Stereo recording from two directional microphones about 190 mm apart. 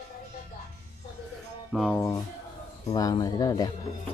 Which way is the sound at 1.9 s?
15° left (ahead or behind).